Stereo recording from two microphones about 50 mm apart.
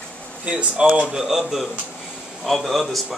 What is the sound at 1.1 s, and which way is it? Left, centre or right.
Speech, centre.